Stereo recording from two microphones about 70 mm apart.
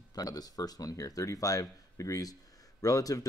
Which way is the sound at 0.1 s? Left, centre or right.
Left.